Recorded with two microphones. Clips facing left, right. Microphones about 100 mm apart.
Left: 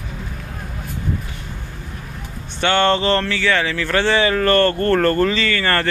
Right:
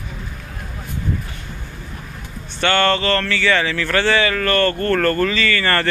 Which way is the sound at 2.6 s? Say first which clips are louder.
Left 1 dB; 15° left (ahead or behind).